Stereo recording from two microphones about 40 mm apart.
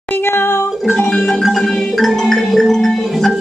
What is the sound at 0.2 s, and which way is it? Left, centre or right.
Music, left.